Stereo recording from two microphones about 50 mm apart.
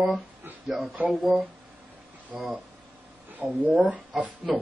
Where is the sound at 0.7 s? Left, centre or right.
Centre.